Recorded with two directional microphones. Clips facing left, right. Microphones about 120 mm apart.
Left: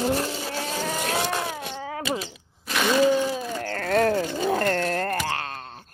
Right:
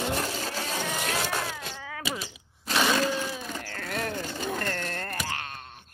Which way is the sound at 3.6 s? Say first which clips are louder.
Left 14 dB; 55° left (ahead or behind).